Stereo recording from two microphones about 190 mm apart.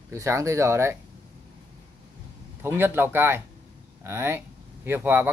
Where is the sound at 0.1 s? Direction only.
15° right (ahead or behind).